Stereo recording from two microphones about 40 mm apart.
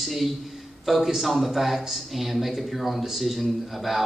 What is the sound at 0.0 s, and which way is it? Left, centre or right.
A man's voice, centre.